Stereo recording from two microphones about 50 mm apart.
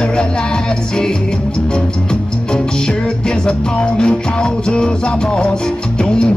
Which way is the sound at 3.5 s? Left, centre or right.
Centre.